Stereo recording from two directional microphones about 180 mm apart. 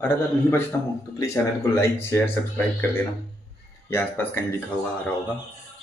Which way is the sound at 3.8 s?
10° left (ahead or behind).